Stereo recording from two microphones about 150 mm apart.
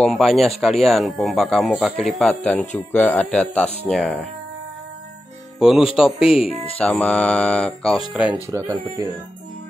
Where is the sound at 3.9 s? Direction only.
5° left (ahead or behind).